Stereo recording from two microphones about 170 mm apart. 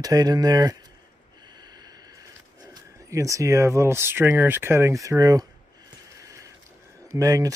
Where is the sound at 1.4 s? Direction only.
25° right (ahead or behind).